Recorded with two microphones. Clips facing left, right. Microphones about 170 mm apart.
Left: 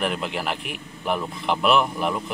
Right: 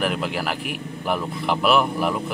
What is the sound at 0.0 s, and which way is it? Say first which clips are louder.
A man's voice: right 2 dB; centre (ahead or behind).